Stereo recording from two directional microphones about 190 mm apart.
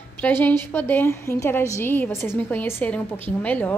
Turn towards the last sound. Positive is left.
turn(degrees=10)  # may be behind; listen again after turning